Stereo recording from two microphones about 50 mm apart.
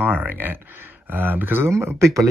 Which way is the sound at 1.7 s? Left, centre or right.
Right.